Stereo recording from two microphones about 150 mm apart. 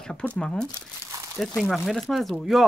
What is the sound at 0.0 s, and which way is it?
Speech, 5° left (ahead or behind).